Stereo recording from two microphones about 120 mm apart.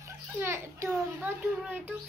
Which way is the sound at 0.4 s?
20° right (ahead or behind).